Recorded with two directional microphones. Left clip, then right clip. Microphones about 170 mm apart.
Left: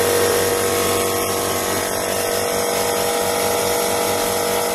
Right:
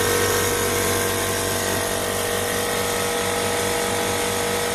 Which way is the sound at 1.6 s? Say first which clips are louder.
Left 2 dB; 10° right (ahead or behind).